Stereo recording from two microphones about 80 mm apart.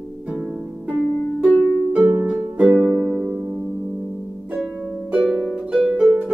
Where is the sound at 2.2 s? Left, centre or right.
Centre.